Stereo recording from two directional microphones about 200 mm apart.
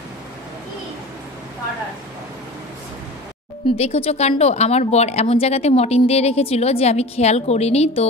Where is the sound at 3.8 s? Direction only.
30° left (ahead or behind).